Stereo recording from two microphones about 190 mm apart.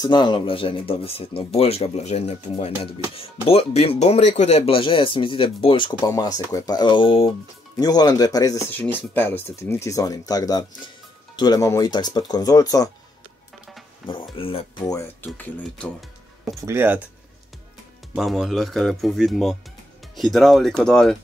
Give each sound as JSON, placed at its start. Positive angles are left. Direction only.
{"t": 0.0, "sound": "speech", "side_deg": 25}
{"t": 14.0, "sound": "speech", "side_deg": 25}
{"t": 14.9, "sound": "speech", "side_deg": 10}
{"t": 16.6, "sound": "speech", "side_deg": -10}
{"t": 18.1, "sound": "speech", "side_deg": 0}